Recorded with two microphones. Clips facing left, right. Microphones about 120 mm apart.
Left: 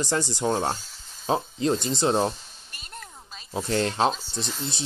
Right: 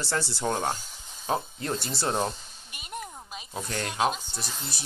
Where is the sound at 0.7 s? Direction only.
15° right (ahead or behind).